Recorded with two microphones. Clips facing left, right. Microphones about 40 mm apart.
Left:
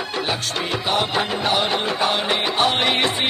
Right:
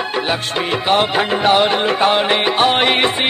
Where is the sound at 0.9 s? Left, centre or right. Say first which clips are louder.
Right 6 dB; right.